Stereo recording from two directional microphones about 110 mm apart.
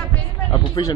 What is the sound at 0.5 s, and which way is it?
Speech, 40° left (ahead or behind).